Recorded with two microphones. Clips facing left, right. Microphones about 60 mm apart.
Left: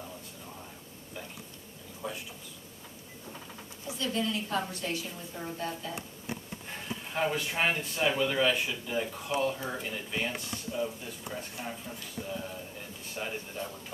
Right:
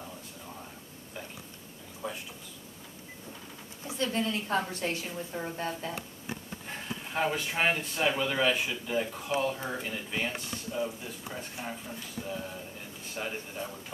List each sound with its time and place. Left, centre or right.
2.0 s a sound: centre
3.8 s a woman's voice: right
6.7 s a man's voice: centre
13.1 s a man's voice: centre